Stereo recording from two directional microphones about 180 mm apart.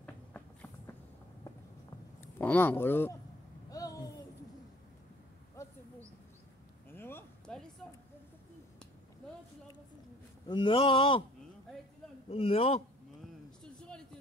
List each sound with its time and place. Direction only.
0.0 s run: 10° left (ahead or behind)
2.3 s speech: 10° left (ahead or behind)
3.7 s a sound: 20° left (ahead or behind)
6.9 s a sound: 10° left (ahead or behind)
10.5 s speech: 30° left (ahead or behind)
12.3 s a man's voice: 35° left (ahead or behind)